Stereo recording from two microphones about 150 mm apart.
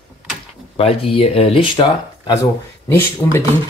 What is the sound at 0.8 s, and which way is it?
Speech, 40° left (ahead or behind).